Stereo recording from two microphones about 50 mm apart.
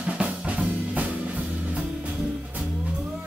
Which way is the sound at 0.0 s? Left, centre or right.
Right.